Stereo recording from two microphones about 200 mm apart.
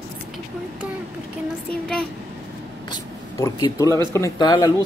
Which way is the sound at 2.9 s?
20° left (ahead or behind).